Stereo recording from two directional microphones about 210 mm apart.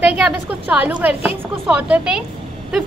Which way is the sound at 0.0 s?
5° right (ahead or behind).